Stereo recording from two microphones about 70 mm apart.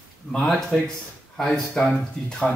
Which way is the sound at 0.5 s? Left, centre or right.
Centre.